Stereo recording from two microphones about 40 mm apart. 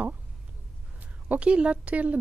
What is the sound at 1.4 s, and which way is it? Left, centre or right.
Speech, right.